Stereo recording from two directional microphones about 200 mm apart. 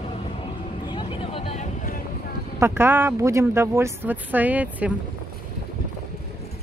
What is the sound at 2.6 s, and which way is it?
Speech, 10° right (ahead or behind).